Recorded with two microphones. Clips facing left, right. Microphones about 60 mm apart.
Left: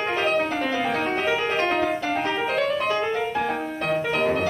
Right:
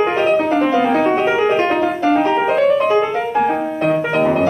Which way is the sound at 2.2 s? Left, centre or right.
Centre.